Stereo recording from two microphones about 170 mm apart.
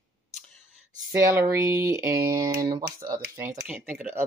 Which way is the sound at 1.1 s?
15° right (ahead or behind).